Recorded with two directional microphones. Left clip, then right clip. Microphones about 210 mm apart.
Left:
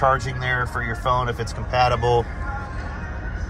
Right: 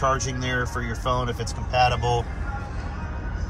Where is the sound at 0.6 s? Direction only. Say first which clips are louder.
Left 3 dB; 10° right (ahead or behind).